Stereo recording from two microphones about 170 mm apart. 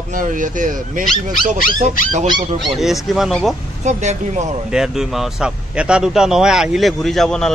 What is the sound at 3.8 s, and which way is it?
Speech, 45° right (ahead or behind).